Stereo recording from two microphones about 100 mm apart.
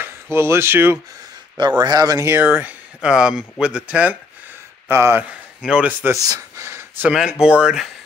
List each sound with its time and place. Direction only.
0.0 s speech: 25° right (ahead or behind)
1.6 s speech: 45° right (ahead or behind); by 2.4 s 30° right (ahead or behind)
2.4 s speech: 15° right (ahead or behind)
4.8 s speech: 25° right (ahead or behind)
5.3 s speech: 10° right (ahead or behind)
6.1 s a sound: 35° right (ahead or behind)
7.0 s speech: 10° right (ahead or behind)